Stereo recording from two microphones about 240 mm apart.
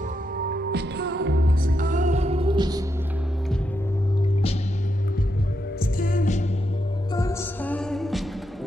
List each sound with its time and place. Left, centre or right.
0.4 s music: right; by 2.8 s centre
5.9 s music: left
7.2 s music: centre